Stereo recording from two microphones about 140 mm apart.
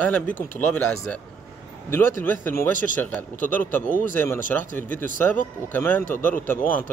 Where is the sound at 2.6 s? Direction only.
70° left (ahead or behind).